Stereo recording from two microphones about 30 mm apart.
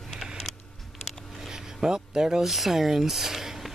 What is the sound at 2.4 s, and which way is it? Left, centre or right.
Speech, centre.